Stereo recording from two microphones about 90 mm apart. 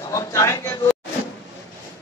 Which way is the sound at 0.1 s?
40° left (ahead or behind).